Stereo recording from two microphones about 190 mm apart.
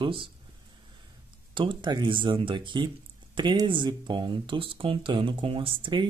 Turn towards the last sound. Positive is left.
turn(degrees=-25)  # may be behind; listen again after turning